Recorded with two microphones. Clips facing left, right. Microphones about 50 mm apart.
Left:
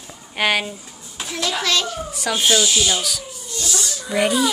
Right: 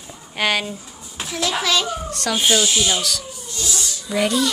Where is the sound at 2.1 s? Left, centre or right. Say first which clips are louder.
Even; centre.